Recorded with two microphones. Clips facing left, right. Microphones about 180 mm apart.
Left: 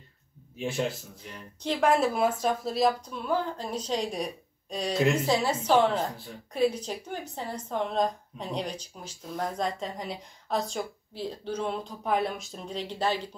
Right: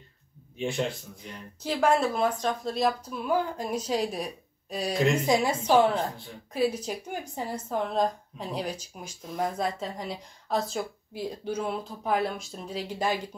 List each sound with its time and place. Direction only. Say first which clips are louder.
0.6 s a woman's voice: right 1 dB; 5° left (ahead or behind)
3.3 s speech: right 2 dB; 10° right (ahead or behind)
5.2 s speech: right 2 dB; 15° right (ahead or behind)
6.1 s a woman's voice: right 1 dB; centre (ahead or behind)